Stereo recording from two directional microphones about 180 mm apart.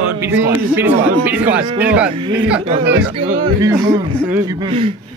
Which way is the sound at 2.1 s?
25° right (ahead or behind).